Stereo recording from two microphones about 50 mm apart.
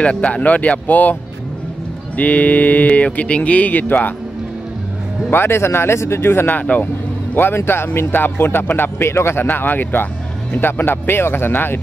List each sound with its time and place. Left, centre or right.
0.0 s speech: left
2.1 s speech: left
5.3 s speech: left
9.0 s speech: left